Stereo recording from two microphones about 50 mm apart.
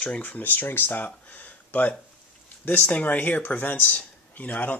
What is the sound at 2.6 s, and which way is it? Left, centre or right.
A man's voice, left.